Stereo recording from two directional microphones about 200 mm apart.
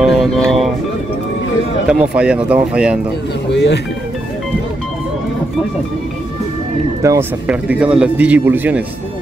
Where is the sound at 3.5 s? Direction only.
60° left (ahead or behind).